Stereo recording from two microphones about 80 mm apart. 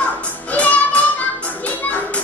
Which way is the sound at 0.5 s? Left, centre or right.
Centre.